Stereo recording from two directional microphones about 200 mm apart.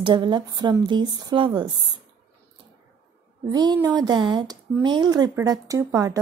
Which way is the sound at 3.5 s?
20° right (ahead or behind).